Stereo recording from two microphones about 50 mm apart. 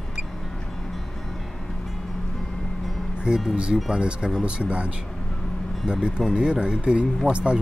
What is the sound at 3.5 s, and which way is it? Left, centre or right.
Speech, centre.